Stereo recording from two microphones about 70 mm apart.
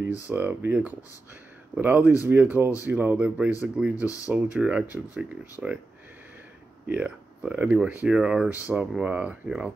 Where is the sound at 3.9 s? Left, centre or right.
Left.